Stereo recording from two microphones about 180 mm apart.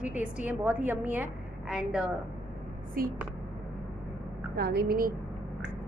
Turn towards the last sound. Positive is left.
turn(degrees=-60)  # may be behind; listen again after turning